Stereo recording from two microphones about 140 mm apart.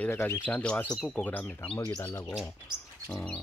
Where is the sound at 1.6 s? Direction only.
40° left (ahead or behind).